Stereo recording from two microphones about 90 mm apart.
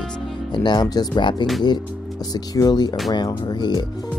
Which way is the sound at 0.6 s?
50° left (ahead or behind).